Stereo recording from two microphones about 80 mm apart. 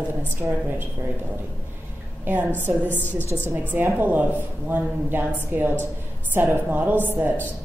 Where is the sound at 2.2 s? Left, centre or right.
Right.